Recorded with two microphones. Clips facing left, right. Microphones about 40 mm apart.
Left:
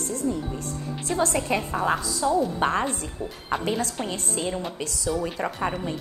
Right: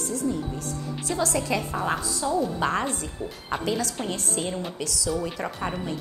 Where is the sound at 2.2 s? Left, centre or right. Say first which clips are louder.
Left 2 dB; left.